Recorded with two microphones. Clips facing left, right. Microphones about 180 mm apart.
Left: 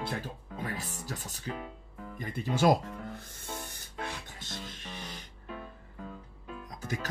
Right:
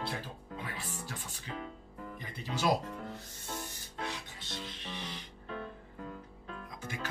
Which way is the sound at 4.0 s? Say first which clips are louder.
Left 1 dB; 45° left (ahead or behind).